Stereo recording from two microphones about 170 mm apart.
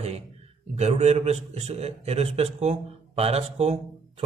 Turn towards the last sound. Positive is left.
turn(degrees=-40)  # may be behind; listen again after turning